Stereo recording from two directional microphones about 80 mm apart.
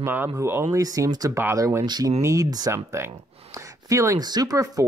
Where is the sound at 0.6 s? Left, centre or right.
Right.